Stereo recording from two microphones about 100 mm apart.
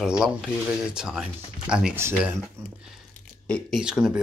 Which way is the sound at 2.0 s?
25° right (ahead or behind).